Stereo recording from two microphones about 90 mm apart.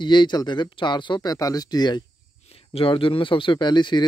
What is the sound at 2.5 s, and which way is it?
Speech, 90° left.